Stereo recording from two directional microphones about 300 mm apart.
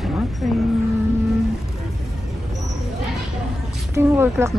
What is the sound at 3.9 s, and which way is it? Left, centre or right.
Speech, centre.